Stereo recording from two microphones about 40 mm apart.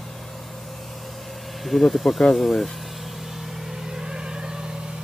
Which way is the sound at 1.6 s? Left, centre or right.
Centre.